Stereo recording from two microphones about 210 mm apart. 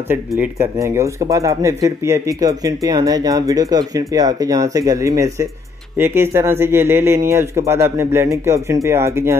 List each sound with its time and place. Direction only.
0.1 s speech: 10° right (ahead or behind)